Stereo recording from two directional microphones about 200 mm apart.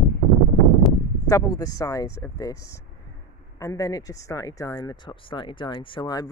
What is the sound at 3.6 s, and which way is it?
Speech, 15° left (ahead or behind).